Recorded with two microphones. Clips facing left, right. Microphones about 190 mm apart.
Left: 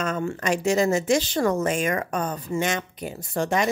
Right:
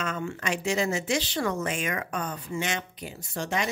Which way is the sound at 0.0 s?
45° left (ahead or behind).